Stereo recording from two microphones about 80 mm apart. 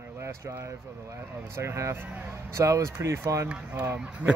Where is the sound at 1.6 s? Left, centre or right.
Right.